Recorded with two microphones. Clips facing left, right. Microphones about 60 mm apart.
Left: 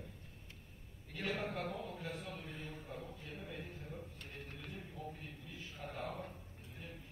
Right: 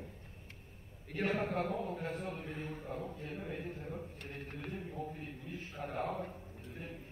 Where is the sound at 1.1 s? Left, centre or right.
Right.